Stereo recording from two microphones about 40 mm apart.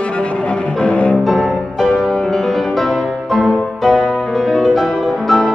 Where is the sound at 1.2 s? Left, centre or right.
Centre.